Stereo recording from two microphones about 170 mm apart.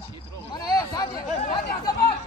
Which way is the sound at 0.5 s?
25° left (ahead or behind).